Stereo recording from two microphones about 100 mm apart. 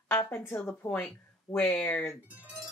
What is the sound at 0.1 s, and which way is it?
Speech, 25° left (ahead or behind).